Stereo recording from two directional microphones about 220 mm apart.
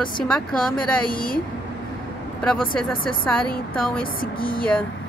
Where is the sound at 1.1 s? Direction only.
40° left (ahead or behind).